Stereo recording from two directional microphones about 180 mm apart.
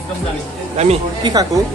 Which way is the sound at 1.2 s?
20° right (ahead or behind).